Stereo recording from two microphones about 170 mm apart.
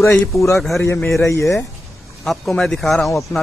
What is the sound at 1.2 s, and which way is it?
Speech, 15° left (ahead or behind).